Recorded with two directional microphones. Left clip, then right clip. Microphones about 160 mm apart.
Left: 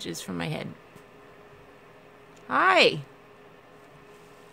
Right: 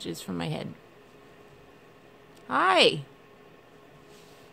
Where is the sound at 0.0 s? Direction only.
10° right (ahead or behind).